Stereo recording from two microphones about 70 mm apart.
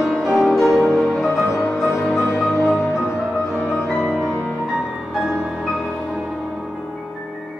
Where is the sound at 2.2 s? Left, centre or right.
Left.